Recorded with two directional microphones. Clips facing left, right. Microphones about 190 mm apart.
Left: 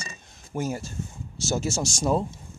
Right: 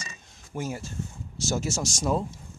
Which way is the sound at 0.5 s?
40° left (ahead or behind).